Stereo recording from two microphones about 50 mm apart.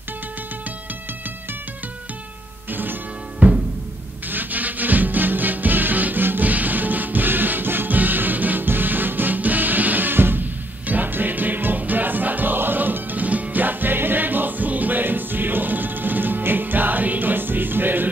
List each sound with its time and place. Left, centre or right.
2.7 s music: right
3.3 s music: centre
4.3 s music: right